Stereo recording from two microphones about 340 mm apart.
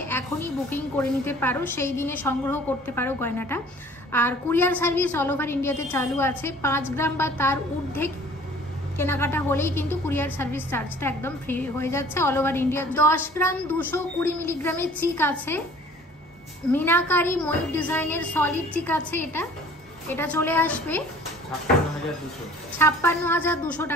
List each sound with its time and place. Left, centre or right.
0.1 s a sound: centre
1.2 s a woman's voice: centre
16.7 s a woman's voice: centre
22.8 s a woman's voice: centre